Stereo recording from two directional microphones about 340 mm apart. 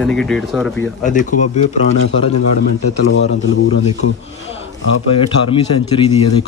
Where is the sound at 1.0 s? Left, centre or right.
Left.